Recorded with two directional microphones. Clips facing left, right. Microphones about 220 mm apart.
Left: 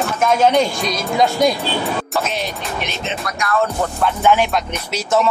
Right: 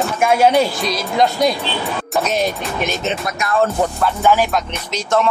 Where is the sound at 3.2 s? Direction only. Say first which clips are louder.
Even; 25° right (ahead or behind).